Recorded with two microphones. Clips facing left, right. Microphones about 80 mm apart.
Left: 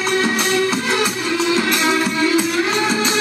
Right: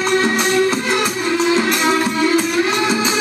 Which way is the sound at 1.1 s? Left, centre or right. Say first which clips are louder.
Right 2 dB; right.